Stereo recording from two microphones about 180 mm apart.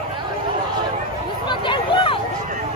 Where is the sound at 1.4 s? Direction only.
25° left (ahead or behind).